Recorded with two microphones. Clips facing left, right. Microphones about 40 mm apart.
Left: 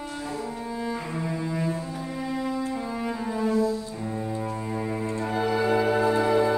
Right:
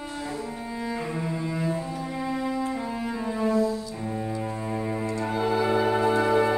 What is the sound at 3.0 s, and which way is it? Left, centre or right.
Brass instrument, centre.